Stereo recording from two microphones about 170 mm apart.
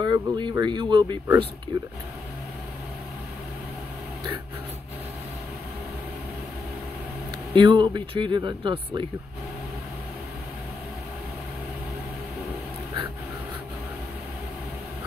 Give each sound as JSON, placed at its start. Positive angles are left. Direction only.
{"t": 0.0, "sound": "speech", "side_deg": -25}
{"t": 7.5, "sound": "speech", "side_deg": -30}